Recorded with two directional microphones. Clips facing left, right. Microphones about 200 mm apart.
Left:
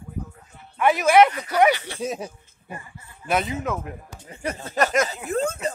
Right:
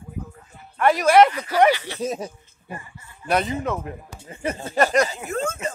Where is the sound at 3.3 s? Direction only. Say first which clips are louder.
Right 2 dB; centre (ahead or behind).